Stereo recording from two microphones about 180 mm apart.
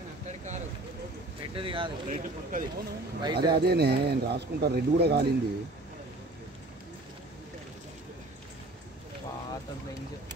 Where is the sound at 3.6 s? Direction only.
60° right (ahead or behind).